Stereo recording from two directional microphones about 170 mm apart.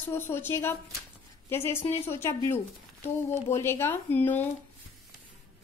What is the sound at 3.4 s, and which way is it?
A woman's voice, 15° left (ahead or behind).